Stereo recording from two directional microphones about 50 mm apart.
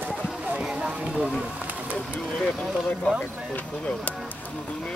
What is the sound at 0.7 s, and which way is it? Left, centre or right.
Speech, right.